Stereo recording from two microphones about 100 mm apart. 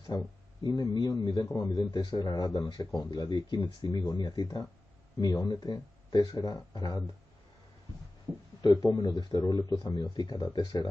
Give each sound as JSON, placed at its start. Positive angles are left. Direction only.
{"t": 0.1, "sound": "a man's voice", "side_deg": 40}
{"t": 8.5, "sound": "speech", "side_deg": 40}